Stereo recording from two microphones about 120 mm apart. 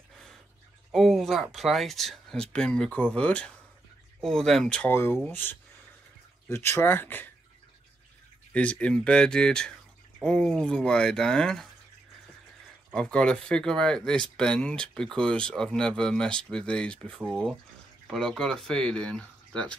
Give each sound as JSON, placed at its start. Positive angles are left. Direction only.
{"t": 0.9, "sound": "speech", "side_deg": 0}
{"t": 4.9, "sound": "speech", "side_deg": 20}
{"t": 8.5, "sound": "speech", "side_deg": 10}
{"t": 12.9, "sound": "speech", "side_deg": 5}